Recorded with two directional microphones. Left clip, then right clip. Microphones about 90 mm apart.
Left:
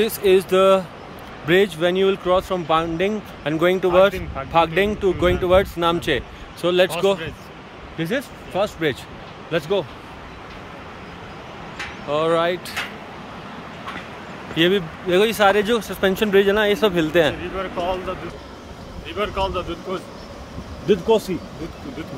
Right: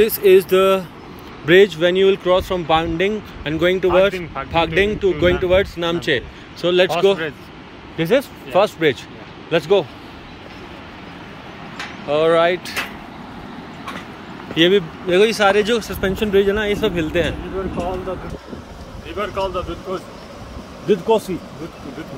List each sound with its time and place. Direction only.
0.0 s speech: 25° left (ahead or behind)
12.1 s speech: 20° left (ahead or behind)
14.5 s speech: 30° left (ahead or behind); by 16.9 s 50° left (ahead or behind)
16.9 s speech: 70° left (ahead or behind)
19.0 s speech: 25° left (ahead or behind)
19.4 s speech: 10° left (ahead or behind)
20.8 s speech: 25° left (ahead or behind)